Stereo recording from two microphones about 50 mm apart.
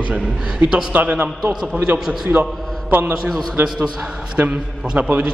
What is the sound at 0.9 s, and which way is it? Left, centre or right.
Speech, right.